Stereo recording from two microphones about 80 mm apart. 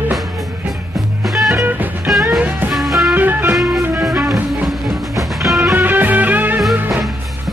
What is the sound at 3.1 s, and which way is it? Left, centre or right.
Music, right.